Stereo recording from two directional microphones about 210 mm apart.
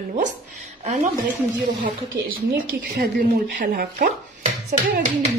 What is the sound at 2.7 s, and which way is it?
Speech, 50° right (ahead or behind).